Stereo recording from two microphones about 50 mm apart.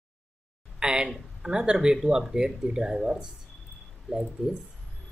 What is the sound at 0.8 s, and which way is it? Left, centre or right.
Speech, centre.